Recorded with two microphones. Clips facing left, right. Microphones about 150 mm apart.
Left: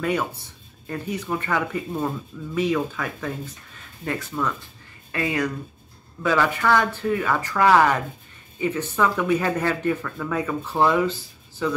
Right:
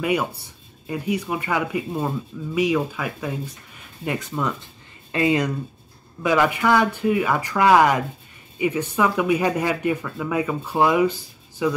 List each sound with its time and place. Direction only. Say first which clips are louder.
0.0 s speech: right 2 dB; 10° right (ahead or behind)